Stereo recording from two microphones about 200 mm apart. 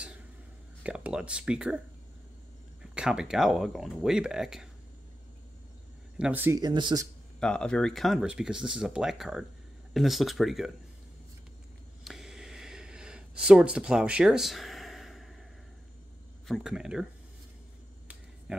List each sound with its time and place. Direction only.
0.8 s speech: 5° right (ahead or behind)
2.8 s speech: 5° right (ahead or behind)
6.1 s speech: 5° right (ahead or behind)
7.3 s speech: 5° left (ahead or behind)
12.0 s a sound: centre (ahead or behind)
16.4 s speech: centre (ahead or behind)
18.5 s speech: 5° right (ahead or behind)